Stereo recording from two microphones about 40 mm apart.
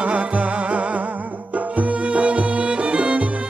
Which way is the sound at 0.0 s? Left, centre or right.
Right.